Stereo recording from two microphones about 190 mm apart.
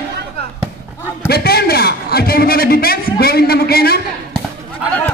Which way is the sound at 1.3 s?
55° left (ahead or behind).